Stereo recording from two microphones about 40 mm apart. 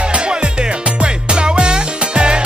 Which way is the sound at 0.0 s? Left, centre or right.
Right.